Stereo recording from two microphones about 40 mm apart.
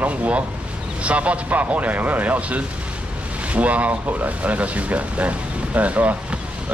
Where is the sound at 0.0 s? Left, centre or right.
Right.